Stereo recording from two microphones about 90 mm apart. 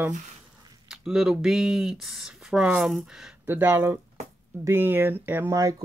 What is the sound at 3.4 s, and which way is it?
Speech, 25° right (ahead or behind).